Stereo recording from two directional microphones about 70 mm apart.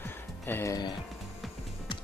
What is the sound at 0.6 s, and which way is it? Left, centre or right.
Speech, left.